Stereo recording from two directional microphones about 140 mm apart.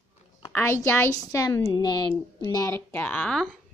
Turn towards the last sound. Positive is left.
turn(degrees=5)  # may be behind; listen again after turning